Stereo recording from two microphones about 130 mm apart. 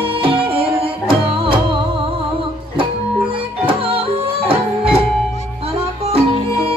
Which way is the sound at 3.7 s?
45° right (ahead or behind).